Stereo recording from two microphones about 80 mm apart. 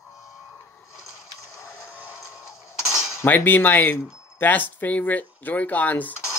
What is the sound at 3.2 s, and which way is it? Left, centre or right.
Speech, left.